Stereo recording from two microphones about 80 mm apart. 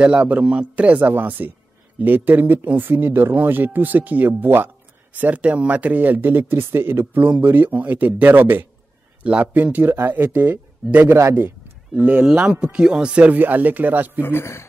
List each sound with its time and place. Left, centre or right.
0.0 s speech: centre
11.1 s a man's voice: right
11.4 s a sound: right
12.3 s speech: centre
14.2 s a man's voice: left